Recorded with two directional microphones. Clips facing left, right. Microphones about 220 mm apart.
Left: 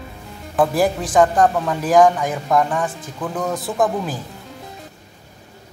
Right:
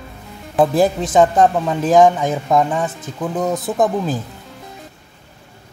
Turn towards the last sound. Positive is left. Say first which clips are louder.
# right 3 dB
turn(degrees=-20)  # may be behind; listen again after turning